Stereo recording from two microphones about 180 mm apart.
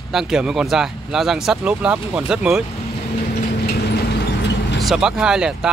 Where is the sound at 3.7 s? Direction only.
65° left (ahead or behind).